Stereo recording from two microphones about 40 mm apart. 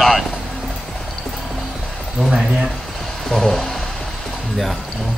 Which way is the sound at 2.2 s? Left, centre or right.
Left.